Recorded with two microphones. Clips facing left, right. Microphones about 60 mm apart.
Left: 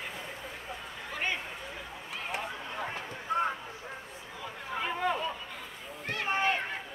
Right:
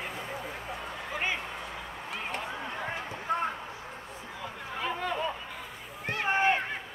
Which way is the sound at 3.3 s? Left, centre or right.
Right.